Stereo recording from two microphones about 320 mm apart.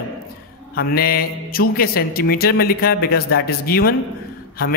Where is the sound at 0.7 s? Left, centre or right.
Left.